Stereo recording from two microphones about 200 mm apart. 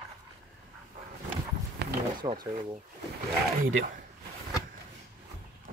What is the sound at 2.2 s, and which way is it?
Speech, 20° right (ahead or behind).